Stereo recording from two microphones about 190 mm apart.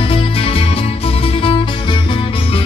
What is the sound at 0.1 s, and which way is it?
Music, 30° left (ahead or behind).